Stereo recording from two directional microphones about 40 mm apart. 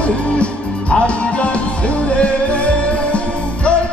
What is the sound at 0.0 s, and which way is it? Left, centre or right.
Music, left.